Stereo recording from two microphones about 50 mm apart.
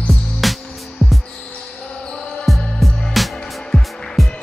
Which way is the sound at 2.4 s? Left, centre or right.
Centre.